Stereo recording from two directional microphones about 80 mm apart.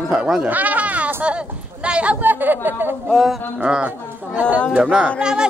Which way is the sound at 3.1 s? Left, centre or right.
Centre.